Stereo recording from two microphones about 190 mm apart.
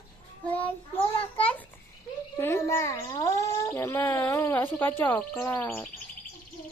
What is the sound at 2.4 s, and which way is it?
A child's voice, 15° left (ahead or behind).